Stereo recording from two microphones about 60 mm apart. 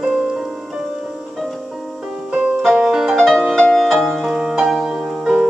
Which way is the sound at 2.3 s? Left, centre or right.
Centre.